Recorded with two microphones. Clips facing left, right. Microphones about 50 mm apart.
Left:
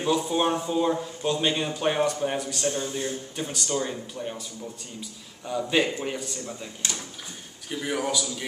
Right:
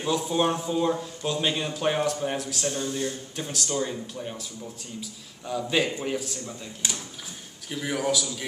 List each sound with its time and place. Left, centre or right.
0.0 s a man's voice: centre
2.7 s speech: centre
3.3 s a man's voice: centre
5.5 s a man's voice: centre
7.7 s a man's voice: centre